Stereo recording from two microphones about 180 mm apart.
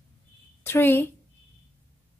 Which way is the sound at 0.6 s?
15° left (ahead or behind).